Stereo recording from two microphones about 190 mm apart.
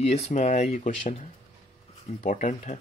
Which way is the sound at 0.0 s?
35° left (ahead or behind).